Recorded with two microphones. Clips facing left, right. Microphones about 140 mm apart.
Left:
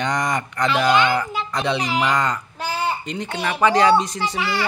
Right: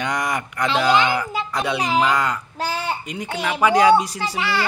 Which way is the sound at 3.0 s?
10° right (ahead or behind).